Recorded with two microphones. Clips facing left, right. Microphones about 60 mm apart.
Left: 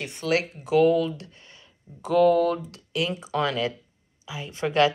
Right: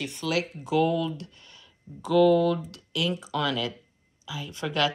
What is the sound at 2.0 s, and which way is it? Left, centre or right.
A woman's voice, left.